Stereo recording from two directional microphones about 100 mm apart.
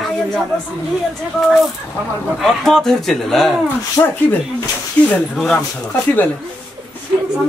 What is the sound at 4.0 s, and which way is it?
Speech, 30° left (ahead or behind).